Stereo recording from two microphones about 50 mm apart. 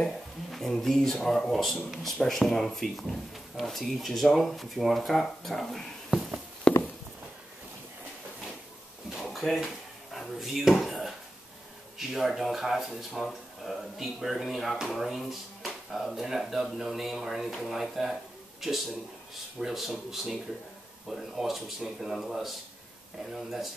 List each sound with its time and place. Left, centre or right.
0.0 s speech: centre
6.0 s a sound: centre
9.3 s speech: centre